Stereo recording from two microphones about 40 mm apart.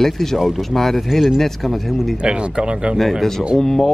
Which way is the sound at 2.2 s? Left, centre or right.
Right.